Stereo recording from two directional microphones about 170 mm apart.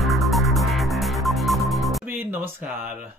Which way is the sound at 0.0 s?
Centre (ahead or behind).